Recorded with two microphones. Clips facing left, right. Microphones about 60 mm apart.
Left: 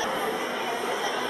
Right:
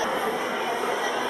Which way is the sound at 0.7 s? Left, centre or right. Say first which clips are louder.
Right 2 dB; centre.